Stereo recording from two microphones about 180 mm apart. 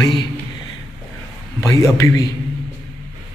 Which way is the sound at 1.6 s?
15° left (ahead or behind).